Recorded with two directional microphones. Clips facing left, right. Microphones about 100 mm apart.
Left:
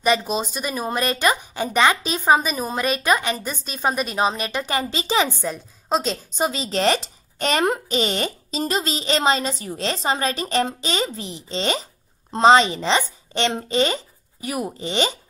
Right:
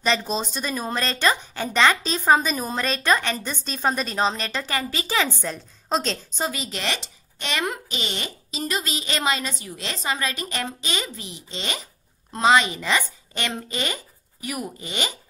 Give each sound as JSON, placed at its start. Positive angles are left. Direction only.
{"t": 0.0, "sound": "a woman's voice", "side_deg": 10}
{"t": 5.4, "sound": "a woman's voice", "side_deg": 5}
{"t": 6.3, "sound": "a woman's voice", "side_deg": 20}
{"t": 6.6, "sound": "a woman's voice", "side_deg": 35}